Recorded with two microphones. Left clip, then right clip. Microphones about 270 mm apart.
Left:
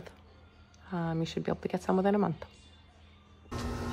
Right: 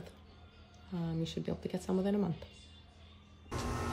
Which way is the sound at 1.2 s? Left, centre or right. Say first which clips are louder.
Left 6 dB; centre.